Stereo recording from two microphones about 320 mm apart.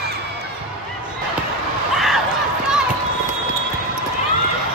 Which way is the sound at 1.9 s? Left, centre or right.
Centre.